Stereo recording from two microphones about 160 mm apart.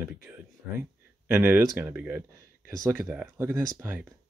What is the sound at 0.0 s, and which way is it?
Speech, 10° right (ahead or behind).